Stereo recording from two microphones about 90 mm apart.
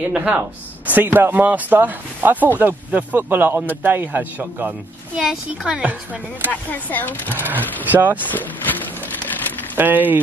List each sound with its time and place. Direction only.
0.1 s speech: 10° right (ahead or behind)
0.8 s speech: 20° right (ahead or behind)
5.1 s speech: 5° right (ahead or behind)
6.5 s speech: 20° left (ahead or behind)
7.4 s speech: 20° right (ahead or behind)
8.2 s speech: 20° left (ahead or behind)
9.8 s speech: 20° right (ahead or behind)